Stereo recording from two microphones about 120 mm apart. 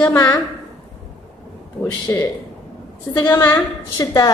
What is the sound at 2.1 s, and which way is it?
Speech, 20° left (ahead or behind).